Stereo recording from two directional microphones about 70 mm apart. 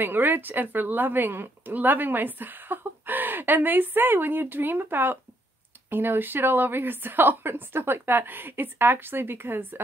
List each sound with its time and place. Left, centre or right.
0.0 s a woman's voice: right